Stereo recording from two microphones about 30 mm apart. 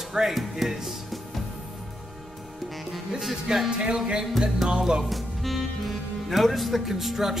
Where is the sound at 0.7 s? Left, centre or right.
Centre.